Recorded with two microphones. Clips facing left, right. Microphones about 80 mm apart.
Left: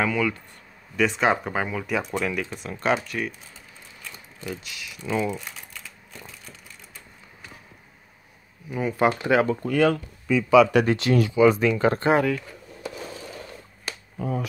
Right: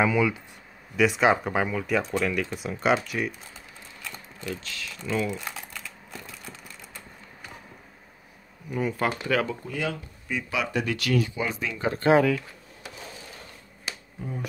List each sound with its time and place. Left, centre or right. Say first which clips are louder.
0.0 s speech: right 1 dB; centre
4.5 s speech: even; centre
8.6 s speech: left 1 dB; centre
8.9 s speech: left 8 dB; centre
9.7 s speech: left 10 dB; left
10.9 s speech: left 6 dB; left
11.1 s speech: left 9 dB; left
12.0 s speech: right 1 dB; centre
14.1 s speech: left 9 dB; left